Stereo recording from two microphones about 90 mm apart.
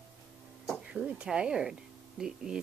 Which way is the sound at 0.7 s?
5° right (ahead or behind).